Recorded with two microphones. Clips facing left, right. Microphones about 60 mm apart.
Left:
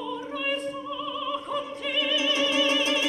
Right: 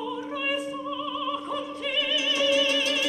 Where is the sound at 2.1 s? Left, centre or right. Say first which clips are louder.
Right 1 dB; left.